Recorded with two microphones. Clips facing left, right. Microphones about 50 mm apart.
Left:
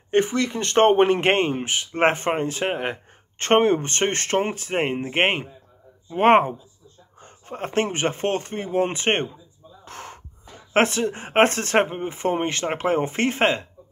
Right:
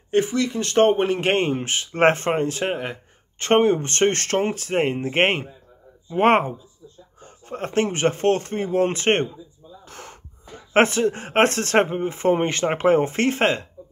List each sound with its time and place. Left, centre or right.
0.2 s speech: left
1.4 s speech: centre
2.8 s speech: left; by 6.3 s centre
7.4 s a man's voice: centre
9.8 s gasp: left
10.7 s speech: centre
11.1 s speech: centre
12.2 s speech: centre